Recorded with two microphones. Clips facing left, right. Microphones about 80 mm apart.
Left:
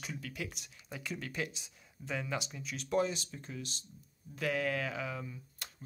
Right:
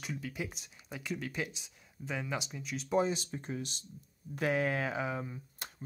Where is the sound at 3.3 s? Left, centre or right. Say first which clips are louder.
Right 5 dB; right.